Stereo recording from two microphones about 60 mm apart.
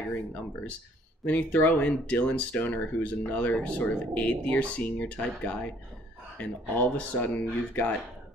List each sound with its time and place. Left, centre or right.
1.2 s speech: left